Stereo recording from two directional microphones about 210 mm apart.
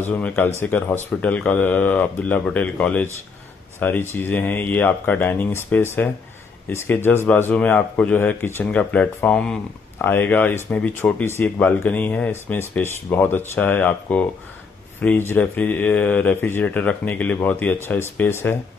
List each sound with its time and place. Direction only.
0.0 s speech: 10° left (ahead or behind)